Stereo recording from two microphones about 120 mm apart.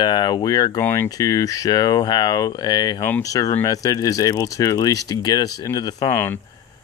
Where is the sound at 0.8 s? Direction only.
20° left (ahead or behind).